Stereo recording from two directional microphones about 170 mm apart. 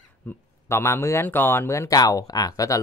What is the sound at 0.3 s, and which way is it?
Speech, 15° left (ahead or behind).